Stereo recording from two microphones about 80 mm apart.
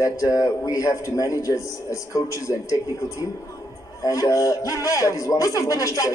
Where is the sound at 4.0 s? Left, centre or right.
Left.